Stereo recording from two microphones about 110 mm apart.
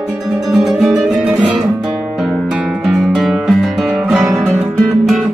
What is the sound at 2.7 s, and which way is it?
Music, centre (ahead or behind).